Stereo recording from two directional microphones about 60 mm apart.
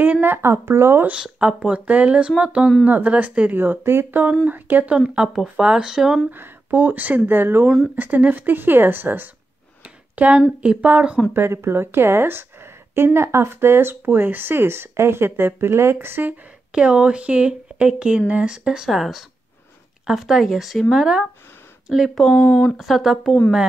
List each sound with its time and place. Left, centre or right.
0.0 s a woman's voice: right
1.2 s speech: centre
2.8 s a woman's voice: right
4.9 s speech: centre
6.3 s a woman's voice: right
7.9 s a woman's voice: right
9.8 s a sound: right
10.6 s speech: right
11.3 s a woman's voice: right
16.7 s speech: centre
22.3 s speech: left
22.8 s speech: centre